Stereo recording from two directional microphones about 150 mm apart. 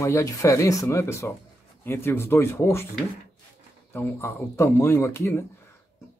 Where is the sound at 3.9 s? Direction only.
20° left (ahead or behind).